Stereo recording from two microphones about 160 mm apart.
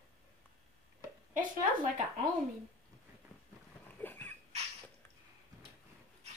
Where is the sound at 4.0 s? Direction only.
10° left (ahead or behind).